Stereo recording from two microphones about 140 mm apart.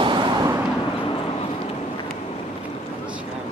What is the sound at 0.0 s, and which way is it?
Vehicle, 35° right (ahead or behind).